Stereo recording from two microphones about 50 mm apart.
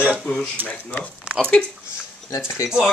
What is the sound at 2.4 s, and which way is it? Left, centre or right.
Speech, left.